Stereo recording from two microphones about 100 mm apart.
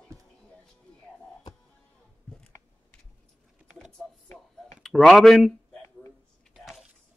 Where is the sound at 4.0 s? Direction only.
15° left (ahead or behind).